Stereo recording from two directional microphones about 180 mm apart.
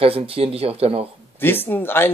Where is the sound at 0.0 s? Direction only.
30° right (ahead or behind).